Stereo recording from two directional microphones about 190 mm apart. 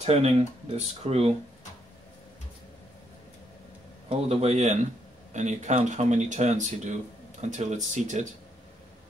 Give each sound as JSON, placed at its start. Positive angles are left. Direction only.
{"t": 0.0, "sound": "speech", "side_deg": -35}
{"t": 4.1, "sound": "speech", "side_deg": -30}